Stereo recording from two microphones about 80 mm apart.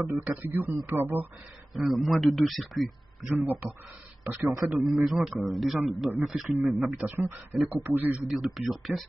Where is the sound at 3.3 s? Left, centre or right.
Right.